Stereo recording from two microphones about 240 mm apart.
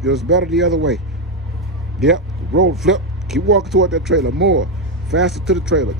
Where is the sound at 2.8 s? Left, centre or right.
Centre.